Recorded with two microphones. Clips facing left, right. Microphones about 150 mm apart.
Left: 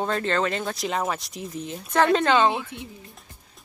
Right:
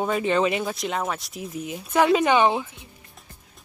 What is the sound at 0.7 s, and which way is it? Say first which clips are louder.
Speech: left 1 dB; centre (ahead or behind).